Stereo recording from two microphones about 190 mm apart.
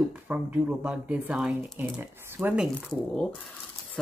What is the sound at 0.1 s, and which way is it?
Speech, 10° right (ahead or behind).